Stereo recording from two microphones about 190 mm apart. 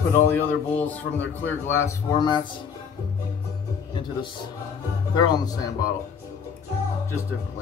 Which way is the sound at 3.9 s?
25° left (ahead or behind).